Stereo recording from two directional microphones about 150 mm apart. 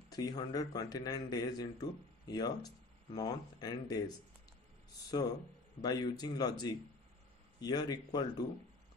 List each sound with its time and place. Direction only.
0.1 s speech: 25° left (ahead or behind)
5.8 s speech: 25° left (ahead or behind)